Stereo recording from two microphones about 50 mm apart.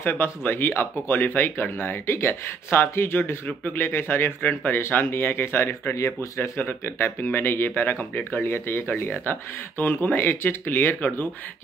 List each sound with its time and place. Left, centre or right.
0.0 s speech: left
4.4 s speech: left
4.8 s speech: left
5.9 s speech: left
6.5 s speech: left